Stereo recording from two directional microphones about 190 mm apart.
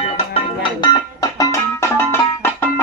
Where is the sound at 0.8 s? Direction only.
20° left (ahead or behind).